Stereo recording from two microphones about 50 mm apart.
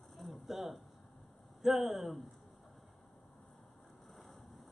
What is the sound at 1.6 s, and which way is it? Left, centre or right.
Speech, centre.